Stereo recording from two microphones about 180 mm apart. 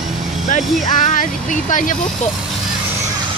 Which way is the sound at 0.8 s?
45° left (ahead or behind).